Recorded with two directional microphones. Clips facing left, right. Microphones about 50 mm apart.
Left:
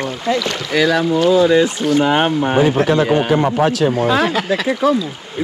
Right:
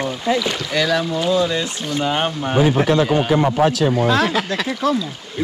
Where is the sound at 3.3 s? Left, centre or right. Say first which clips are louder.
Left 1 dB; left.